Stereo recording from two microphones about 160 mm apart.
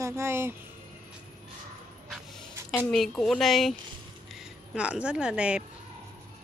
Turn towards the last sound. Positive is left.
turn(degrees=-5)  # may be behind; listen again after turning